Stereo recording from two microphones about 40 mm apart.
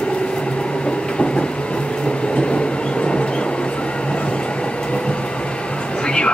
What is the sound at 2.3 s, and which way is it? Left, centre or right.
Vehicle, left.